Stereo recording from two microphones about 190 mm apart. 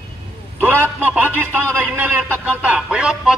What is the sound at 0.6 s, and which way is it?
A man's voice, 10° right (ahead or behind).